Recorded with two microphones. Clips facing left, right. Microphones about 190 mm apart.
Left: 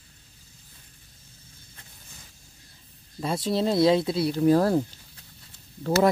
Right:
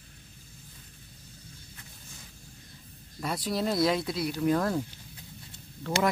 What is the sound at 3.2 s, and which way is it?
Speech, 25° left (ahead or behind).